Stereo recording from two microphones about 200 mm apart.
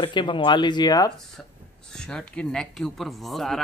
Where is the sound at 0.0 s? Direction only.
25° left (ahead or behind).